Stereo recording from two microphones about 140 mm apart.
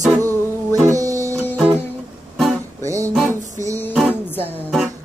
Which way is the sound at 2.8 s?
20° right (ahead or behind).